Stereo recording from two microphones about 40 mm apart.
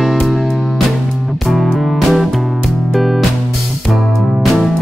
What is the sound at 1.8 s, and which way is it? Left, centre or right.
Music, centre.